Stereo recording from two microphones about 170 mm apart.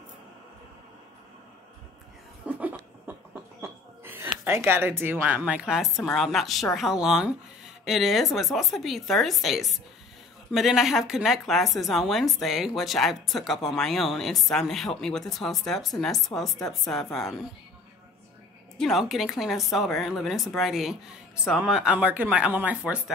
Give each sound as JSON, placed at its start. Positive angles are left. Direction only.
{"t": 2.4, "sound": "a sound", "side_deg": -10}
{"t": 3.6, "sound": "a woman's voice", "side_deg": -15}
{"t": 18.8, "sound": "a woman's voice", "side_deg": 0}